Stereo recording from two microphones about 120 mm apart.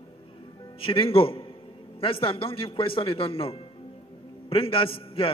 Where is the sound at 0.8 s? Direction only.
50° left (ahead or behind).